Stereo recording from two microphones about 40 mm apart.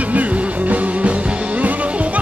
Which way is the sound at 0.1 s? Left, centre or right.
Right.